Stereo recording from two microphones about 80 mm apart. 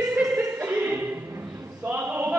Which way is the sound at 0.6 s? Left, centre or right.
Right.